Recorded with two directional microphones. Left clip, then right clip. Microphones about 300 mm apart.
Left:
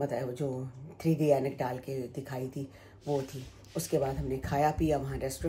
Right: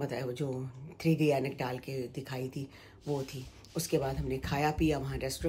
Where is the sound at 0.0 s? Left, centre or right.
Centre.